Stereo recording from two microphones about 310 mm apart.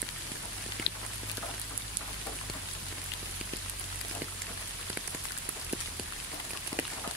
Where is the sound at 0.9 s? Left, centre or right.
Left.